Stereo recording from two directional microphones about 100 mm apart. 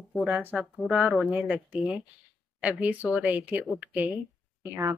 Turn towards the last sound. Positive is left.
turn(degrees=-30)  # may be behind; listen again after turning